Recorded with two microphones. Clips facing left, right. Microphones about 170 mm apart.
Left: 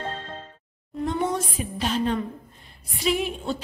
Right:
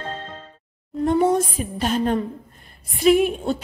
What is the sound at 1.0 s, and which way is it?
A woman's voice, 50° right (ahead or behind).